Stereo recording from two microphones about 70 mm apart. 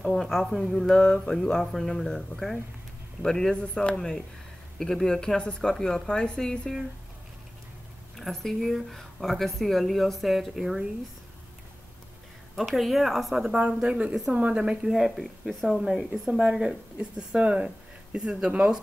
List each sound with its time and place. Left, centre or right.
0.0 s a woman's voice: centre
8.2 s speech: centre
12.5 s speech: centre
14.9 s speech: centre